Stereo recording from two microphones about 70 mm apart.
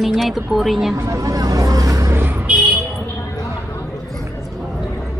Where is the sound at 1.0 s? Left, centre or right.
Right.